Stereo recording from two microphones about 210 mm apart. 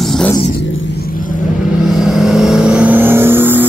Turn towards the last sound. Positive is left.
turn(degrees=-10)  # may be behind; listen again after turning